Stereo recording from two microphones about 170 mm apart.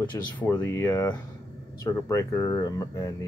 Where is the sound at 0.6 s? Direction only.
15° left (ahead or behind).